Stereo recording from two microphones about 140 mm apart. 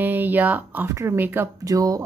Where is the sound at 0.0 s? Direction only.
15° right (ahead or behind).